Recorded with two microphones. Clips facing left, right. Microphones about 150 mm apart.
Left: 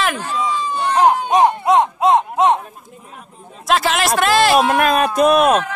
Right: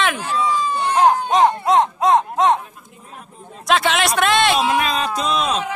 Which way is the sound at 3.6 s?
Centre (ahead or behind).